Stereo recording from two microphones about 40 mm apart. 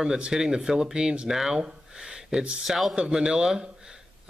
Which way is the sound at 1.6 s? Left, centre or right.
Right.